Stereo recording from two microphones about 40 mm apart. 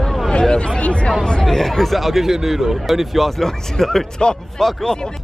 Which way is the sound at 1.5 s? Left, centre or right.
Centre.